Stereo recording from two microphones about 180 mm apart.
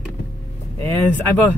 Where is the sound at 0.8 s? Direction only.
15° left (ahead or behind).